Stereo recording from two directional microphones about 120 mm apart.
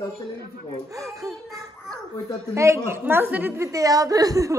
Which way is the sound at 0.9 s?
30° right (ahead or behind).